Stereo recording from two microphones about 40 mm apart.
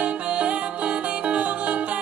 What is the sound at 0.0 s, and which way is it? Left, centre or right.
Music, right.